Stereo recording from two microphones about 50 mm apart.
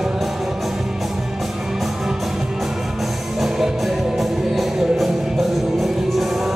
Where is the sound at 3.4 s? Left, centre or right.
Centre.